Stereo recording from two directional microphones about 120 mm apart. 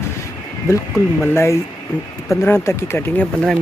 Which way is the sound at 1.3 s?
20° left (ahead or behind).